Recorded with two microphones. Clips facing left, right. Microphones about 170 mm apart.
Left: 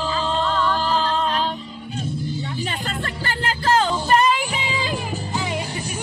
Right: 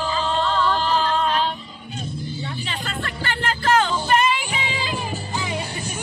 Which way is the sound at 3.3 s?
35° left (ahead or behind).